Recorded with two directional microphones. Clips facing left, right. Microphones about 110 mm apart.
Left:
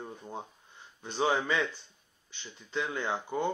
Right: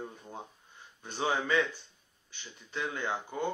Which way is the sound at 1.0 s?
20° left (ahead or behind).